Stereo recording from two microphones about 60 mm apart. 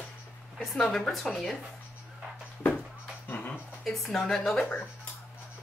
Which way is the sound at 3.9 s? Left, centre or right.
Centre.